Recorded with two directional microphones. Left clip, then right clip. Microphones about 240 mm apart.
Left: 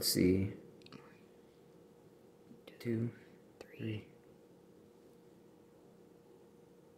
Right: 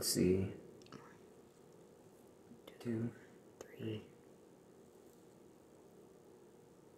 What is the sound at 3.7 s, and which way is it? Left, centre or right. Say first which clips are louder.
Speech: left 1 dB; left.